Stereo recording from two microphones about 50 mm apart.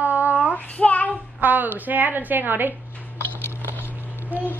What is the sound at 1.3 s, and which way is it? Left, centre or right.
A woman's voice, right.